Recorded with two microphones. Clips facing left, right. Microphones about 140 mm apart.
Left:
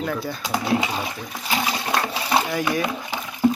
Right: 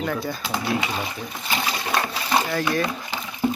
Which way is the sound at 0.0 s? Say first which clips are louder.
Even; centre (ahead or behind).